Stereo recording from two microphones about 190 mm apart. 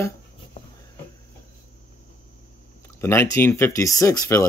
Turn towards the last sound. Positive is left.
turn(degrees=15)  # may be behind; listen again after turning